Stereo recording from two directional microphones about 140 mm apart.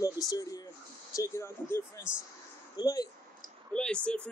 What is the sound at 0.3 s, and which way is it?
Speech, 25° left (ahead or behind).